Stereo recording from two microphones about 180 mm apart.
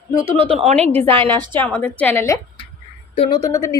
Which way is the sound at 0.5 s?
35° right (ahead or behind).